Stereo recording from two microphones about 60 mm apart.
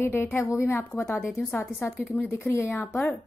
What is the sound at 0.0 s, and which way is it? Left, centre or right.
Speech, left.